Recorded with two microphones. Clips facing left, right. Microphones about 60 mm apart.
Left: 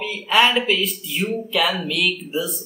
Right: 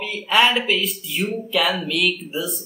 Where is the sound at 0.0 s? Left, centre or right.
Centre.